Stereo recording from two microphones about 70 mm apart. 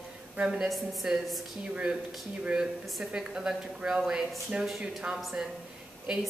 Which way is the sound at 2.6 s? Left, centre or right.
Centre.